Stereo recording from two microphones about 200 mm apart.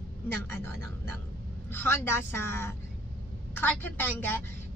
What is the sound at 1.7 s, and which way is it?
A woman's voice, 10° left (ahead or behind).